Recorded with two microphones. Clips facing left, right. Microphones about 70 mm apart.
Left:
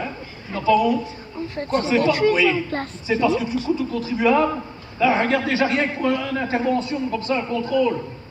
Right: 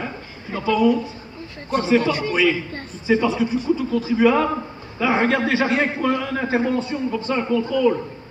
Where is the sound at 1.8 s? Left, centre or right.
Right.